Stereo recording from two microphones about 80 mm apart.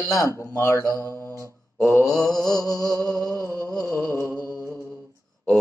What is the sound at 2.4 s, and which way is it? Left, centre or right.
Speech, left.